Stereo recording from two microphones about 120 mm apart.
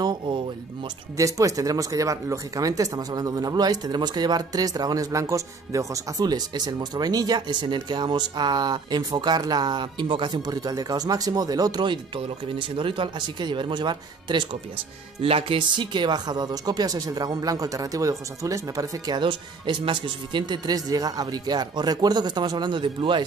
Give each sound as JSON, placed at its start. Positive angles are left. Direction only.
{"t": 1.1, "sound": "speech", "side_deg": -30}